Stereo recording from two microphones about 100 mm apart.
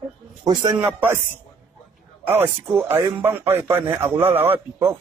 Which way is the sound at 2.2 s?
20° right (ahead or behind).